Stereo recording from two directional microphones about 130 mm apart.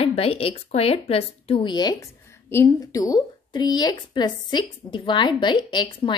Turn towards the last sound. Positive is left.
turn(degrees=40)  # may be behind; listen again after turning